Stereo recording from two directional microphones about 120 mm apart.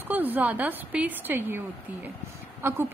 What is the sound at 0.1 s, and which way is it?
A woman's voice, 15° right (ahead or behind).